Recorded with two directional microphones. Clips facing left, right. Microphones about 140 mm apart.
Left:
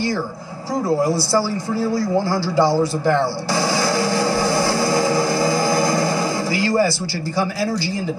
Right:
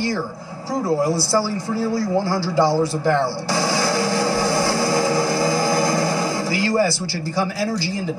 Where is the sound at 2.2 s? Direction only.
15° left (ahead or behind).